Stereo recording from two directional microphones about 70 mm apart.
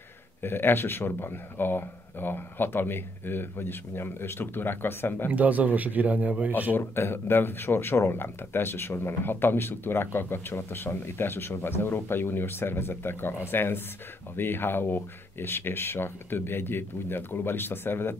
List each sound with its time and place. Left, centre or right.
0.4 s speech: left
5.3 s a man's voice: right
6.7 s speech: left